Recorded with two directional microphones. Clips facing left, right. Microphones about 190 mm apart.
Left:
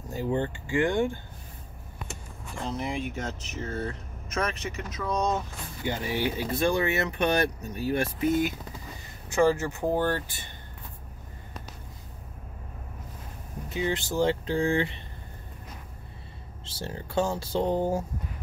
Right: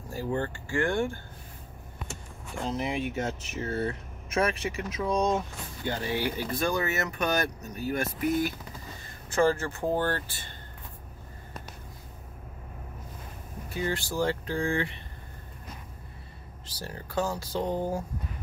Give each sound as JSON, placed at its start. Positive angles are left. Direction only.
{"t": 0.1, "sound": "speech", "side_deg": 20}
{"t": 2.6, "sound": "speech", "side_deg": -5}
{"t": 5.9, "sound": "speech", "side_deg": 20}
{"t": 9.3, "sound": "speech", "side_deg": 15}
{"t": 13.7, "sound": "speech", "side_deg": 20}
{"t": 16.6, "sound": "speech", "side_deg": 25}